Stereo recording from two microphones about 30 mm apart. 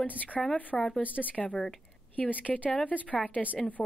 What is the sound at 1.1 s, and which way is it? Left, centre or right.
Speech, left.